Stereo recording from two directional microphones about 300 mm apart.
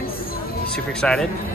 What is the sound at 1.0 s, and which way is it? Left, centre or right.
Speech, centre.